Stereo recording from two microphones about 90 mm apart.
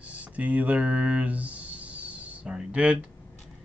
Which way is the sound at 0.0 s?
15° right (ahead or behind).